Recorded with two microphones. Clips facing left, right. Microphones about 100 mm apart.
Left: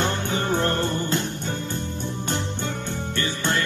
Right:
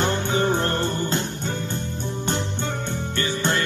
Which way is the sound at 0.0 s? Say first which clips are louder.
Right 3 dB; 30° right (ahead or behind).